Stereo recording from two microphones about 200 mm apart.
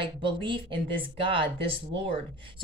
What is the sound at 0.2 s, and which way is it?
Speech, 25° right (ahead or behind).